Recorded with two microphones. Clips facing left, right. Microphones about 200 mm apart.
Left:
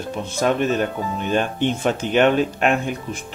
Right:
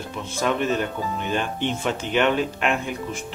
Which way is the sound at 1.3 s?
45° left (ahead or behind).